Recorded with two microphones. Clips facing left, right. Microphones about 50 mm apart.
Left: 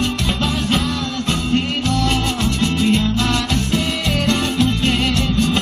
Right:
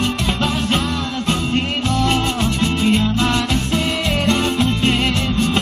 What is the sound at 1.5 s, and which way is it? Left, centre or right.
Music, centre.